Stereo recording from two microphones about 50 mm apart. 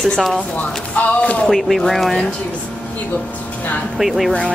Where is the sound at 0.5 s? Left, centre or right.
Left.